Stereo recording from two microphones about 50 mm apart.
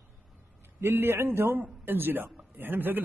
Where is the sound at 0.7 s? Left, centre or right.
Right.